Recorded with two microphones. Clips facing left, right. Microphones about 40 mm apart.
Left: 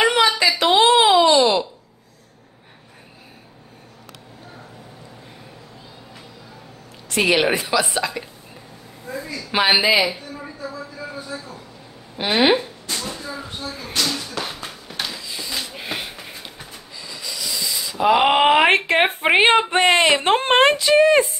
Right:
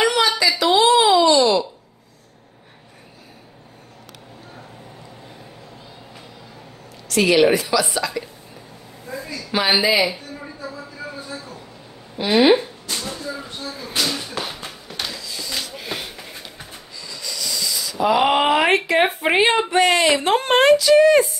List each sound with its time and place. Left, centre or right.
0.0 s a sound: left
7.1 s a woman's voice: left
9.4 s a woman's voice: left
12.2 s speech: left
13.1 s speech: centre
13.5 s speech: centre
13.9 s speech: centre
14.9 s a sound: centre
15.1 s a sound: left
18.9 s speech: left